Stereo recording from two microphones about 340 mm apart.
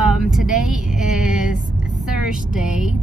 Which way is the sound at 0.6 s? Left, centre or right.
Centre.